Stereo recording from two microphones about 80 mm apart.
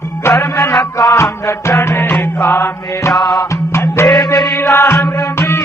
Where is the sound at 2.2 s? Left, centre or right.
Left.